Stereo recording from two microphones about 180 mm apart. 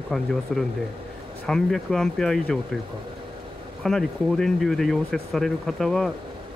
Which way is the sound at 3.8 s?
Centre (ahead or behind).